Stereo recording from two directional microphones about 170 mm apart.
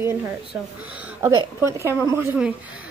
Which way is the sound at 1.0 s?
15° right (ahead or behind).